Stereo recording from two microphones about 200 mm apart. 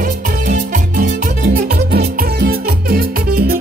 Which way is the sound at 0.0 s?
40° right (ahead or behind).